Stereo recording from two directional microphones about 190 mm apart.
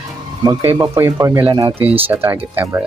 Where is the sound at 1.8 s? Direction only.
10° right (ahead or behind).